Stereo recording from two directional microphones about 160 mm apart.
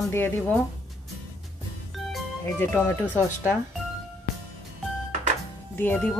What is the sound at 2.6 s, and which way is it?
Speech, 15° left (ahead or behind).